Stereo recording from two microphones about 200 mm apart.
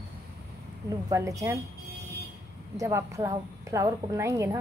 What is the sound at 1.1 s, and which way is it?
Speech, 15° right (ahead or behind).